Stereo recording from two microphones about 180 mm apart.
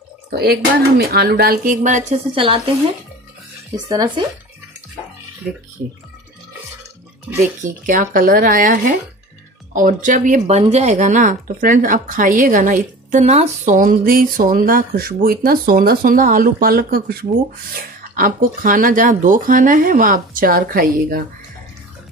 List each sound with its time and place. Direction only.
0.3 s speech: 60° right (ahead or behind); by 2.1 s 40° right (ahead or behind)
2.3 s speech: 30° right (ahead or behind)
7.6 s speech: 45° right (ahead or behind)